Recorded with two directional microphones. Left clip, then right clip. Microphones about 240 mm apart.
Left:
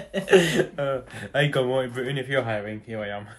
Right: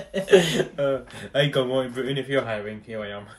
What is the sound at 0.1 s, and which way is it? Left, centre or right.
Speech, centre.